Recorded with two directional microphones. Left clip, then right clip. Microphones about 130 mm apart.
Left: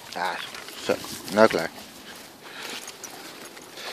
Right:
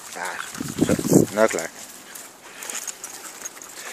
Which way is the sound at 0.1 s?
10° left (ahead or behind).